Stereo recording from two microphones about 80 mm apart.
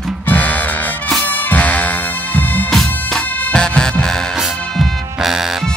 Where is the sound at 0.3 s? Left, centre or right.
Centre.